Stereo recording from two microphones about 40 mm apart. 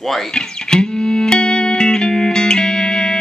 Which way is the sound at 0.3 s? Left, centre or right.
Left.